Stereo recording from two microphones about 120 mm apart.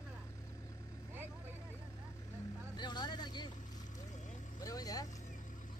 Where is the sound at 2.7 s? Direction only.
35° left (ahead or behind).